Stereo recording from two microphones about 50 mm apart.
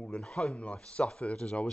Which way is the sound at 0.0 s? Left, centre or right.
Centre.